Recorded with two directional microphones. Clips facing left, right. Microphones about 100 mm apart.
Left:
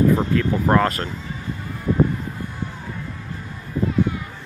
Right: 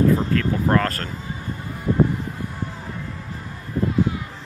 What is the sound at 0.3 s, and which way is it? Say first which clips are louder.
Speech: left 1 dB; 15° left (ahead or behind).